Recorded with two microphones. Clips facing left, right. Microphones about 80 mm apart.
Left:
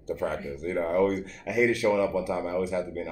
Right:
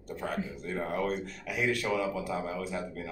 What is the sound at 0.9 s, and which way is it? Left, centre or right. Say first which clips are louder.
Speech: left 9 dB; centre.